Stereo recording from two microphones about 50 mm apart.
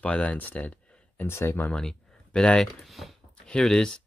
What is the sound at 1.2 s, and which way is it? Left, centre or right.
Speech, left.